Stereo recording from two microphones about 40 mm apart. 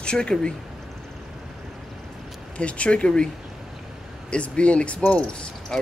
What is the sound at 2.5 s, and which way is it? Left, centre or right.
Speech, left.